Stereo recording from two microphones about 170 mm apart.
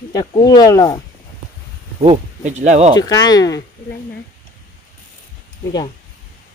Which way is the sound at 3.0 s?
20° left (ahead or behind).